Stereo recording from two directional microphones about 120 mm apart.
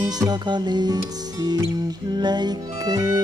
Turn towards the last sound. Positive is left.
turn(degrees=-30)  # may be behind; listen again after turning